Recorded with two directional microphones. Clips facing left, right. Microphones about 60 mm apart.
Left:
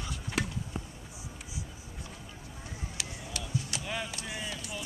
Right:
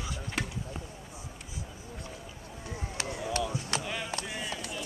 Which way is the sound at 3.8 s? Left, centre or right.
Centre.